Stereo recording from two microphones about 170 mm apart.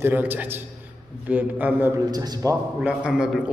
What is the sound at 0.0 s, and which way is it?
A man's voice, 10° right (ahead or behind).